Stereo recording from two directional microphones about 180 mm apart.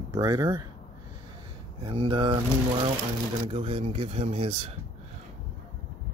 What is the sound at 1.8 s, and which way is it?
Speech, 30° right (ahead or behind).